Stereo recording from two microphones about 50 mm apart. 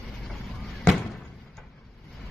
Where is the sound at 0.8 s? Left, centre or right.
Centre.